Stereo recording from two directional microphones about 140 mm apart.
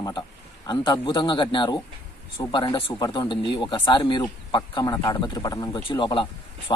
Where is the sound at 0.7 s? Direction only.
30° left (ahead or behind).